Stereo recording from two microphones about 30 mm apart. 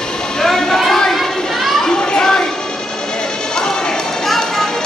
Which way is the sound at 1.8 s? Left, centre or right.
Left.